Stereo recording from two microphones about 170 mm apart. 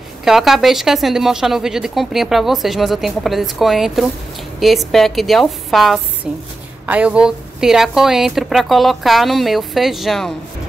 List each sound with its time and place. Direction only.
0.2 s a woman's voice: centre (ahead or behind)